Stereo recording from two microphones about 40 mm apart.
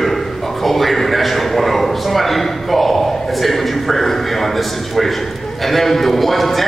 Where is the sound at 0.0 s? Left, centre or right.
Centre.